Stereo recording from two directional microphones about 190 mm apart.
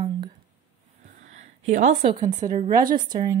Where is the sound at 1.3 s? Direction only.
40° right (ahead or behind).